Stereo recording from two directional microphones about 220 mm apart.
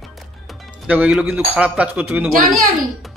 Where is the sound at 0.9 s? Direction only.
5° right (ahead or behind).